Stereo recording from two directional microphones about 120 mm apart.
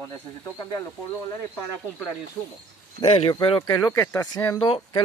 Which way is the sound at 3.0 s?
55° left (ahead or behind).